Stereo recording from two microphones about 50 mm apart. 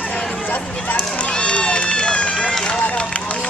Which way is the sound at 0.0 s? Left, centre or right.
Centre.